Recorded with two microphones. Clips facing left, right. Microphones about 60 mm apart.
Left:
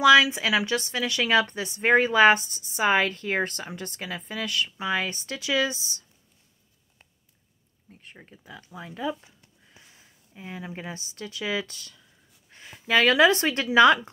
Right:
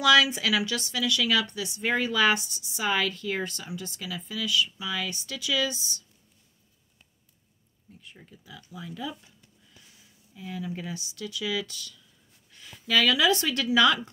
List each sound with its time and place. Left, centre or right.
0.0 s a woman's voice: left
8.0 s a woman's voice: left